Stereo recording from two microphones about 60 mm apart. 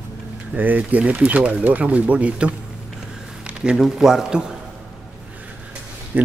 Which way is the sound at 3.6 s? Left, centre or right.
Centre.